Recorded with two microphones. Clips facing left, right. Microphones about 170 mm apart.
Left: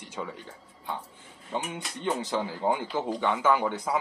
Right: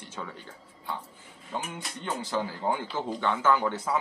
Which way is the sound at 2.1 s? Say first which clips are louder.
Left 1 dB; 20° left (ahead or behind).